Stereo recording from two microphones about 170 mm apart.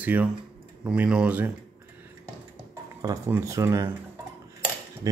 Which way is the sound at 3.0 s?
20° right (ahead or behind).